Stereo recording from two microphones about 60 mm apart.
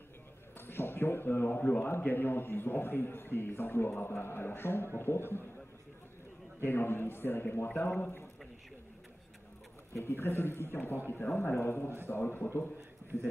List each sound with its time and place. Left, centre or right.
0.6 s speech: left
6.6 s speech: left
9.9 s speech: left